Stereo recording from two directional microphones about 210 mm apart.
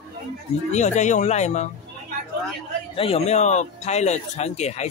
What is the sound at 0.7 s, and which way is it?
Speech, 35° left (ahead or behind).